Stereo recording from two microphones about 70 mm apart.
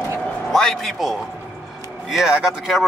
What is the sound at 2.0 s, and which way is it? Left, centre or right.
Speech, centre.